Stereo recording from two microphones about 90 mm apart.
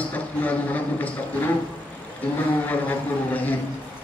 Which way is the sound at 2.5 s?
20° left (ahead or behind).